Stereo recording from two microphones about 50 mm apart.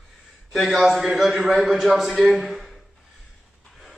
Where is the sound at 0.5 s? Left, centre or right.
Centre.